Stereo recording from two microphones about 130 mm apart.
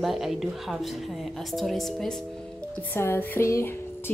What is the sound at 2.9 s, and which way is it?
Music, 20° left (ahead or behind).